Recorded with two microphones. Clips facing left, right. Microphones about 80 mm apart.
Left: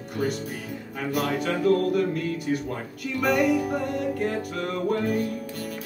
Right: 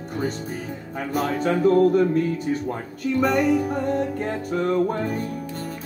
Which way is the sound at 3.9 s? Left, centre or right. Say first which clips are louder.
Right 2 dB; right.